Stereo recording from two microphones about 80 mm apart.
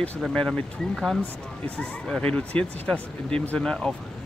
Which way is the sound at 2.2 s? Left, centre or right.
Centre.